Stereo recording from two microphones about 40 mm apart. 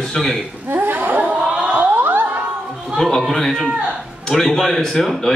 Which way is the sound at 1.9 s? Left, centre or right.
Right.